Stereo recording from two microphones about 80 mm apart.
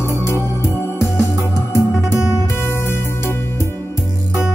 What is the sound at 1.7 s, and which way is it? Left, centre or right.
Music, left.